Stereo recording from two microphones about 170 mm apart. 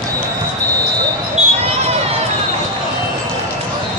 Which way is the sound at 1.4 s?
40° right (ahead or behind).